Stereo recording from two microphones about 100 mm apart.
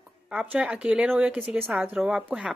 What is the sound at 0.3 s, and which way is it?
Speech, 10° right (ahead or behind).